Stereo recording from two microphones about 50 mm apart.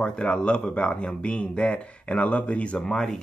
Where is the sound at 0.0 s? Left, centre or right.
Centre.